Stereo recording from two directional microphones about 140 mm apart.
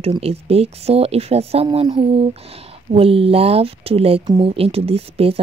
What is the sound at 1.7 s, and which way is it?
Speech, 30° right (ahead or behind).